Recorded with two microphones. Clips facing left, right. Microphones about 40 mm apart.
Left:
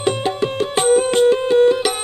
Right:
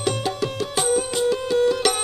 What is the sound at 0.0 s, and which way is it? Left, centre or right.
Music, left.